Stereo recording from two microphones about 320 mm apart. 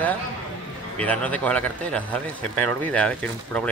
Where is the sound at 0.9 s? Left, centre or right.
Centre.